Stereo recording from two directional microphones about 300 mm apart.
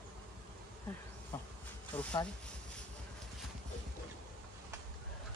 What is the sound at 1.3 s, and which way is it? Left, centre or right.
Bee, centre.